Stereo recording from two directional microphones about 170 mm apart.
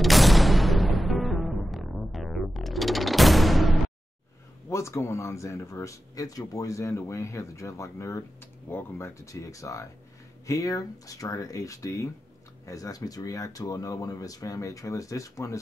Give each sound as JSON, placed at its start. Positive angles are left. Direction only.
{"t": 0.0, "sound": "music", "side_deg": 0}
{"t": 4.6, "sound": "speech", "side_deg": 15}